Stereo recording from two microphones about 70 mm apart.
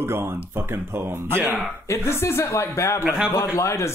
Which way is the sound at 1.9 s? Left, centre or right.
Left.